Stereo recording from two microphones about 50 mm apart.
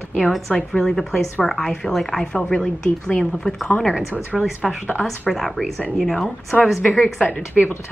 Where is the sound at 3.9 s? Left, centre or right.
Centre.